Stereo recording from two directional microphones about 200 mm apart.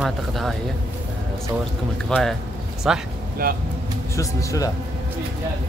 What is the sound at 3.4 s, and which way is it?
Speech, 50° right (ahead or behind).